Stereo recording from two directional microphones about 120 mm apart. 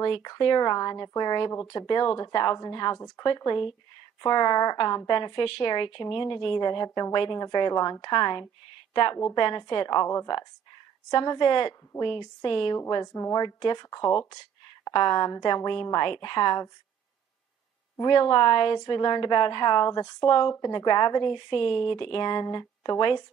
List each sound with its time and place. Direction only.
0.1 s a woman's voice: 35° left (ahead or behind)
12.7 s a woman's voice: 30° left (ahead or behind)
17.9 s a woman's voice: 30° left (ahead or behind)